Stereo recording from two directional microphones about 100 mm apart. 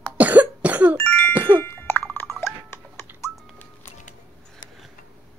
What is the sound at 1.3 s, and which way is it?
Music, 20° right (ahead or behind).